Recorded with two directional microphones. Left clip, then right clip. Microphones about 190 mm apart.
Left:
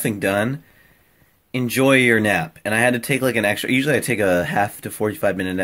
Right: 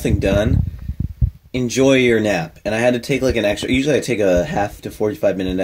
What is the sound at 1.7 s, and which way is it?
Speech, 25° left (ahead or behind).